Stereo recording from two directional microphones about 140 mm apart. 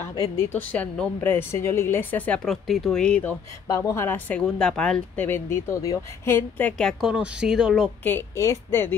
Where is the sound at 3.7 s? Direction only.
20° left (ahead or behind); by 7.9 s 5° right (ahead or behind).